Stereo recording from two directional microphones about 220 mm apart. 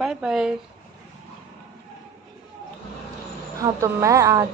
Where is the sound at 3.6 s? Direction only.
15° right (ahead or behind).